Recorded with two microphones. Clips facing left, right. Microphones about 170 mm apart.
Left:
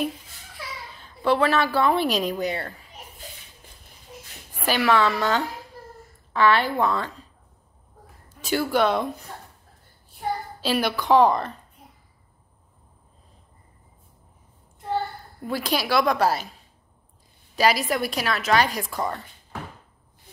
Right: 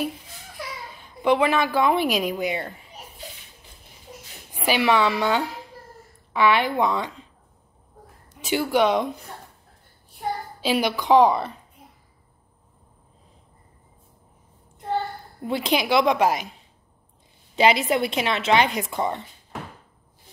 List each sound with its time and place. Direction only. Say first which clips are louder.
0.9 s a woman's voice: right 1 dB; 15° right (ahead or behind)
4.5 s a woman's voice: right 1 dB; 15° right (ahead or behind)
8.4 s a woman's voice: right 1 dB; 15° right (ahead or behind)
10.6 s a woman's voice: right 2 dB; 15° right (ahead or behind)
15.4 s a woman's voice: right 3 dB; 20° right (ahead or behind)
17.6 s a woman's voice: right 2 dB; 20° right (ahead or behind)